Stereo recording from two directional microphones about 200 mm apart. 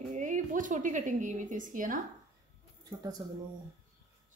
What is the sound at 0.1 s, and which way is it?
A woman's voice, 40° right (ahead or behind).